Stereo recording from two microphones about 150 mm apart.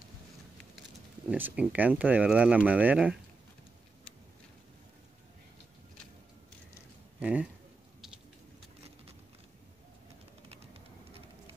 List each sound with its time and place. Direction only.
1.3 s speech: 10° right (ahead or behind)
7.2 s speech: 10° right (ahead or behind)
10.5 s pigeon: 40° right (ahead or behind)